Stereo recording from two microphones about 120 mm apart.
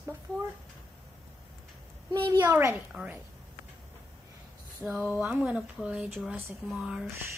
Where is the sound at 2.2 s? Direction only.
40° right (ahead or behind).